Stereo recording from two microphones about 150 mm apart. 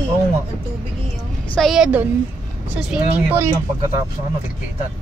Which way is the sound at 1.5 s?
Centre (ahead or behind).